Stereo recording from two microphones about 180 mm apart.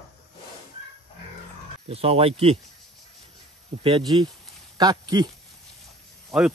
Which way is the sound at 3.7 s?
35° right (ahead or behind).